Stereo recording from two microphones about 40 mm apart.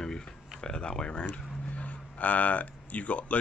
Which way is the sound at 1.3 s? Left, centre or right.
Left.